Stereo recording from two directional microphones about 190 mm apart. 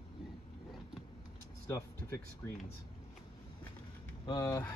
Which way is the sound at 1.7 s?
15° left (ahead or behind).